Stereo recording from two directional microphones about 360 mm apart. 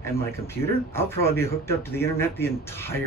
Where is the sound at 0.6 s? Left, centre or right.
Centre.